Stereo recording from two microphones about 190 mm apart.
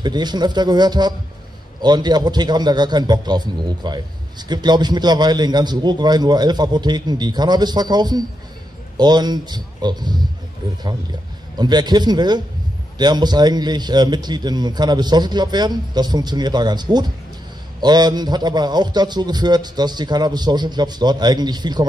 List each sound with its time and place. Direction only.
0.0 s a man's voice: 20° right (ahead or behind)
11.5 s a man's voice: 20° right (ahead or behind)